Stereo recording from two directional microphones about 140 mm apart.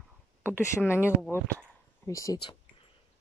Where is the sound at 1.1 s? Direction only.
15° right (ahead or behind).